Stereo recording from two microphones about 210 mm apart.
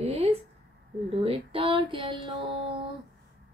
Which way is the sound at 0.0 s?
30° right (ahead or behind).